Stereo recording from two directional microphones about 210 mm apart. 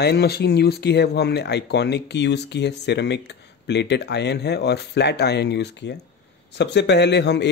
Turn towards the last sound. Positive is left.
turn(degrees=55)  # may be behind; listen again after turning